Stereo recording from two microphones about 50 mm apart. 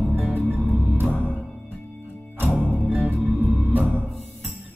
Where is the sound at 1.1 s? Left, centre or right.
Left.